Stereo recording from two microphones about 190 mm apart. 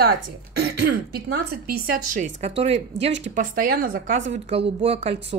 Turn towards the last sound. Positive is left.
turn(degrees=-30)  # may be behind; listen again after turning